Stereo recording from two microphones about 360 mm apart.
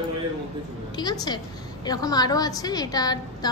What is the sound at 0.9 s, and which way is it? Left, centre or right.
A woman's voice, centre.